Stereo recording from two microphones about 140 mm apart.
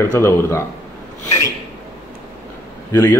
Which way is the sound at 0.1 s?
20° left (ahead or behind).